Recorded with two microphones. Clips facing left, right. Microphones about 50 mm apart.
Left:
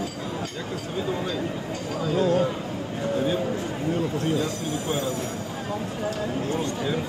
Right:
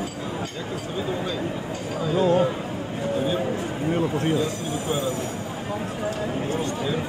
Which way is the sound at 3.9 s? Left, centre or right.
Right.